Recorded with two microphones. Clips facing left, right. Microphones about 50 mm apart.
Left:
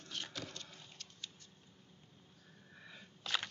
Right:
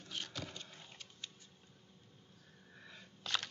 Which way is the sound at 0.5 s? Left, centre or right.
Centre.